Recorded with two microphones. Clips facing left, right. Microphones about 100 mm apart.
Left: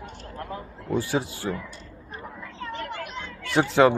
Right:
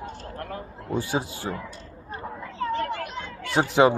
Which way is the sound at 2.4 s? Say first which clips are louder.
Right 8 dB; 40° right (ahead or behind).